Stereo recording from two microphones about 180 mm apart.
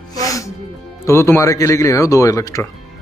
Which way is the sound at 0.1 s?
20° left (ahead or behind).